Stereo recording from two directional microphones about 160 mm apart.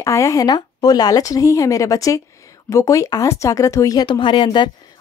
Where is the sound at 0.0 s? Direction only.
20° left (ahead or behind).